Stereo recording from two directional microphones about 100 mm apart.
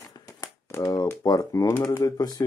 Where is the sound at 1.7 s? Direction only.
20° left (ahead or behind).